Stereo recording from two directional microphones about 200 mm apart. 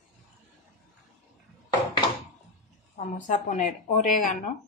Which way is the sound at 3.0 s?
40° left (ahead or behind).